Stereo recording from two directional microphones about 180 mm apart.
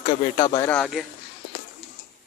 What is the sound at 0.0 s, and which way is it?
Speech, 25° left (ahead or behind).